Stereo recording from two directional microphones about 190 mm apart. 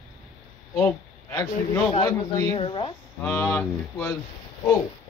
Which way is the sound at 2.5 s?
30° left (ahead or behind).